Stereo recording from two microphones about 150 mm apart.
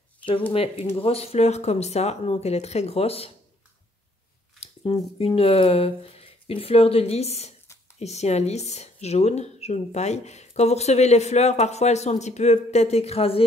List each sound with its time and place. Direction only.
0.5 s speech: 40° left (ahead or behind)
4.6 s speech: 40° left (ahead or behind)